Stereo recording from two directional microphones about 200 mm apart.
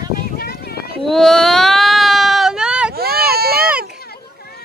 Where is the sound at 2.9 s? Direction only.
50° right (ahead or behind).